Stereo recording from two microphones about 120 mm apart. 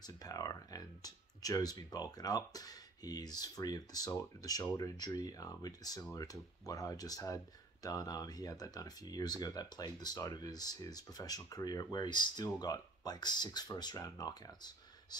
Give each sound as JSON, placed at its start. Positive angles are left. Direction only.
{"t": 0.0, "sound": "speech", "side_deg": 30}